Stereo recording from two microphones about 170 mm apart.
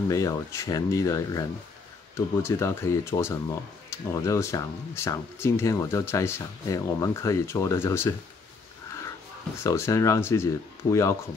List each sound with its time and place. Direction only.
0.1 s speech: 20° left (ahead or behind)
9.6 s speech: 15° left (ahead or behind)